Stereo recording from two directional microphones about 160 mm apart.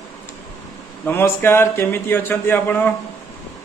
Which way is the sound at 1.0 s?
15° left (ahead or behind).